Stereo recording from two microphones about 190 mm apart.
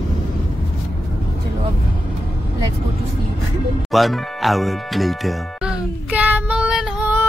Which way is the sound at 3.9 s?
Centre (ahead or behind).